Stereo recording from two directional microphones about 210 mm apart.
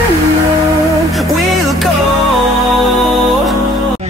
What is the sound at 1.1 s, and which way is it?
Music, centre (ahead or behind).